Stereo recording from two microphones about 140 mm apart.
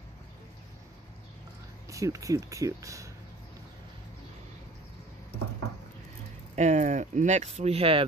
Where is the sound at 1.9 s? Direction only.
25° right (ahead or behind).